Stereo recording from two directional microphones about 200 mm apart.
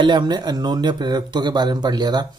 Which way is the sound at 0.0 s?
20° right (ahead or behind).